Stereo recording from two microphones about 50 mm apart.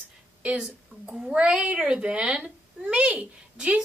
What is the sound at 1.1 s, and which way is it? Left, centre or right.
Speech, centre.